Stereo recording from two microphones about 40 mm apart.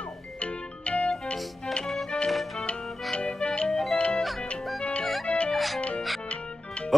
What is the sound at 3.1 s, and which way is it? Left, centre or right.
Music, left.